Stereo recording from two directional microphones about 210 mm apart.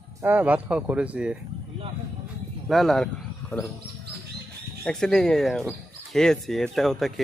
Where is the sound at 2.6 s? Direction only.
Centre (ahead or behind).